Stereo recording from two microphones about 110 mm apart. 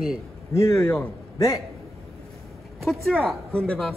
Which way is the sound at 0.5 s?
25° left (ahead or behind).